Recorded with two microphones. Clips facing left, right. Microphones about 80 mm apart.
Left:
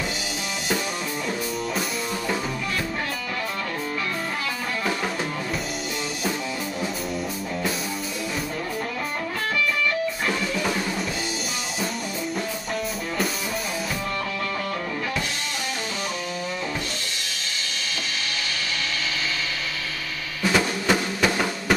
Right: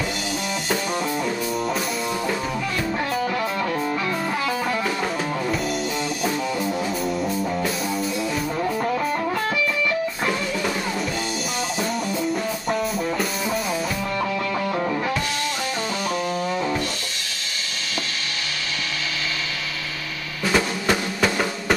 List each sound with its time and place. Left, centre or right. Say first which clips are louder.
20.5 s drum: right 1 dB; centre